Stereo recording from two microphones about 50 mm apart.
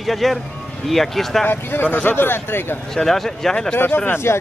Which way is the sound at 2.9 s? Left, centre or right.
Centre.